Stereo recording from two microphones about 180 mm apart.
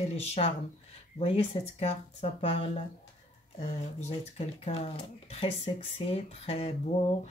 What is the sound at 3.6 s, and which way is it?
Speech, 35° left (ahead or behind).